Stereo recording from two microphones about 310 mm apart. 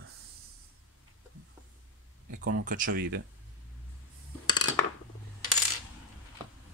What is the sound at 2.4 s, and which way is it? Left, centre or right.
Speech, right.